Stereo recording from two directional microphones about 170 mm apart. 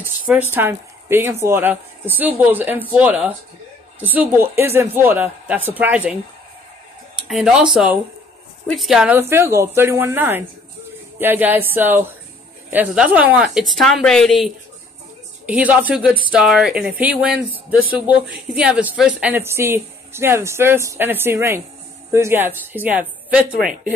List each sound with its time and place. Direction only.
0.3 s a woman's voice: 10° right (ahead or behind)
7.2 s a woman's voice: centre (ahead or behind)
9.3 s a woman's voice: 15° right (ahead or behind); by 14.5 s centre (ahead or behind)
15.4 s a woman's voice: 10° right (ahead or behind)